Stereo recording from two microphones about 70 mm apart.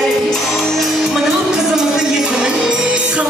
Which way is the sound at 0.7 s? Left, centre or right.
Centre.